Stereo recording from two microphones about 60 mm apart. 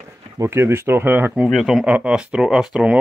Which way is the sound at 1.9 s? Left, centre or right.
Centre.